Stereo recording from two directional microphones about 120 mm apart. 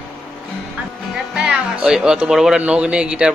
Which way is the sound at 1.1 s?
5° right (ahead or behind).